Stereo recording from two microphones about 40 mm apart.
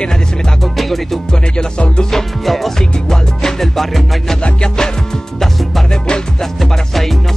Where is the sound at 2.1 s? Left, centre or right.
Centre.